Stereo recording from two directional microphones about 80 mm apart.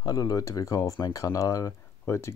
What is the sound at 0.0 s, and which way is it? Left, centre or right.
Speech, left.